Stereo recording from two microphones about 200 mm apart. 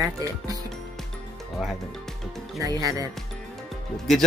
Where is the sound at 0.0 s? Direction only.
15° right (ahead or behind).